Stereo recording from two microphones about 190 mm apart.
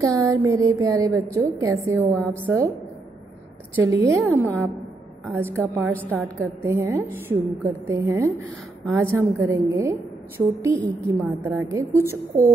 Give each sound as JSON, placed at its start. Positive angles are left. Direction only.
{"t": 0.0, "sound": "a sound", "side_deg": -20}
{"t": 1.3, "sound": "a woman's voice", "side_deg": -15}
{"t": 3.7, "sound": "a woman's voice", "side_deg": -15}